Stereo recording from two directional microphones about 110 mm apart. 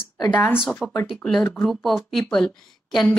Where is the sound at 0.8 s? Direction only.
Centre (ahead or behind).